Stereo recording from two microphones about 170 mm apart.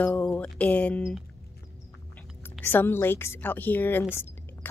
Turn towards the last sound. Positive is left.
turn(degrees=15)  # may be behind; listen again after turning